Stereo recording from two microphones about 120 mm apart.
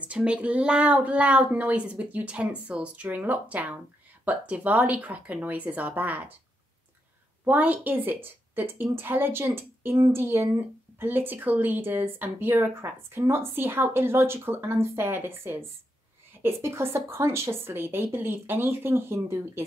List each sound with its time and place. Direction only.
0.0 s speech: 10° right (ahead or behind)
7.4 s a woman's voice: 15° right (ahead or behind)